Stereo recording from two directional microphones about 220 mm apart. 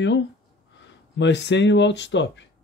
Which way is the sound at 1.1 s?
55° left (ahead or behind).